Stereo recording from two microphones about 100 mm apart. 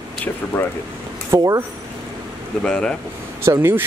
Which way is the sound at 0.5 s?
20° left (ahead or behind).